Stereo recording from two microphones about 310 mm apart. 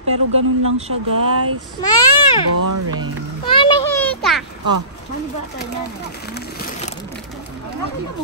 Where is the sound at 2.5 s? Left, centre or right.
Right.